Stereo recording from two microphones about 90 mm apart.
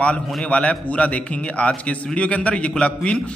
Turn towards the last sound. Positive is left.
turn(degrees=15)  # may be behind; listen again after turning